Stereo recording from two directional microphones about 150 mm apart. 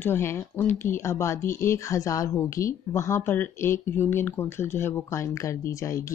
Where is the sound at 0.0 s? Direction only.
15° left (ahead or behind).